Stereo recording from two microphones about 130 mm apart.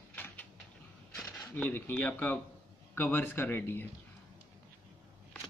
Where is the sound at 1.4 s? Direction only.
15° left (ahead or behind).